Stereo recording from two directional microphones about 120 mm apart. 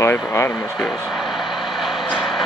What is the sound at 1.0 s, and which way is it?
Vehicle, centre (ahead or behind).